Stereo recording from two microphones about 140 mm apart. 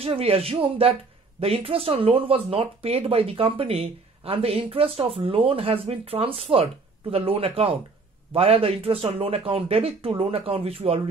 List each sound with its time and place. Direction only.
0.0 s speech: 45° right (ahead or behind)